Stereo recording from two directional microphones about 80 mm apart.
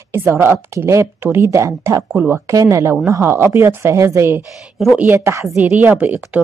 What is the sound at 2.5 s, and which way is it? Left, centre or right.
Speech, right.